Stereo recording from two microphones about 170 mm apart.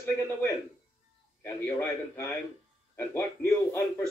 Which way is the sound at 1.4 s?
10° left (ahead or behind).